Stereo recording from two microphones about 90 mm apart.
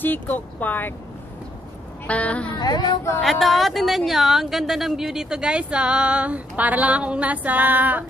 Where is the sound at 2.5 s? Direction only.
50° left (ahead or behind).